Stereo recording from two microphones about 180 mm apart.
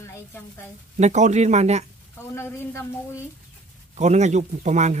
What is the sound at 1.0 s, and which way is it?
Speech, 40° right (ahead or behind).